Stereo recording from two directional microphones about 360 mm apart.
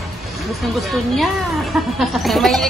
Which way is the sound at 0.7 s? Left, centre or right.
Centre.